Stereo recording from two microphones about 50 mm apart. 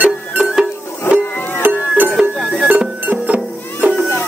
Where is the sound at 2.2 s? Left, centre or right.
Centre.